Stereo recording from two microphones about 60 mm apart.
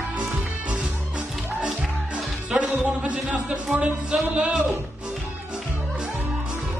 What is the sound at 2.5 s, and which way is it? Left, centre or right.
Music, centre.